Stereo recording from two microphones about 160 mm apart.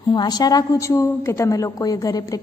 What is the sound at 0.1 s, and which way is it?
A woman's voice, 25° left (ahead or behind).